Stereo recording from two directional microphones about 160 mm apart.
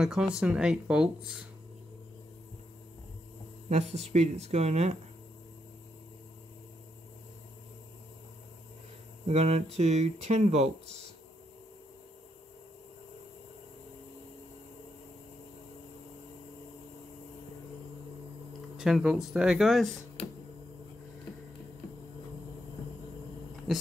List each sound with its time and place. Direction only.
0.0 s speech: 5° right (ahead or behind)
3.6 s speech: 45° right (ahead or behind)
9.2 s speech: 40° right (ahead or behind)
18.8 s speech: 5° right (ahead or behind)
23.7 s speech: centre (ahead or behind)